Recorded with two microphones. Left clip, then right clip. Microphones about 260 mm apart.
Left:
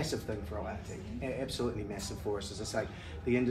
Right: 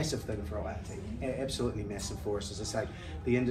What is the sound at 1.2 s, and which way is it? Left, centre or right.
A man's voice, centre.